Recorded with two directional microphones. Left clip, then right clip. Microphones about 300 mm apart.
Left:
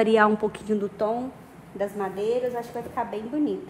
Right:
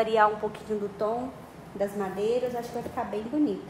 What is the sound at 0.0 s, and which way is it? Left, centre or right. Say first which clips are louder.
A woman's voice: left 3 dB; left.